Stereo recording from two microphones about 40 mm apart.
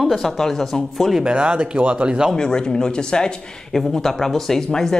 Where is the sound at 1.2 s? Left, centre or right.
Right.